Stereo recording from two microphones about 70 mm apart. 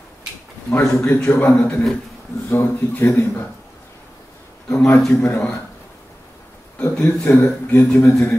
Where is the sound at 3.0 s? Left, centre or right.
Left.